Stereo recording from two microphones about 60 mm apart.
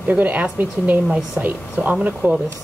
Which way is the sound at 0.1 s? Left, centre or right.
Right.